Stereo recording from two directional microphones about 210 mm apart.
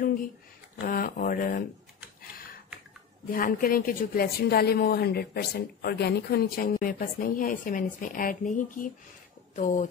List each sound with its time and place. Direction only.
0.7 s a woman's voice: 45° left (ahead or behind)
3.3 s a woman's voice: 40° left (ahead or behind)